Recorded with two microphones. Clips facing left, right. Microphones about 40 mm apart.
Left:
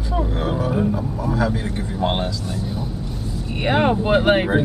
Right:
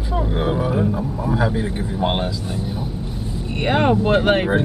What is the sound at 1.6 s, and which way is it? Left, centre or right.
Speech, centre.